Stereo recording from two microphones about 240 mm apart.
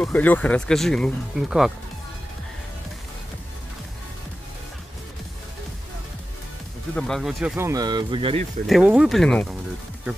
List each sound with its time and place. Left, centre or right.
0.0 s speech: centre
7.0 s speech: centre; by 8.5 s right
8.6 s speech: centre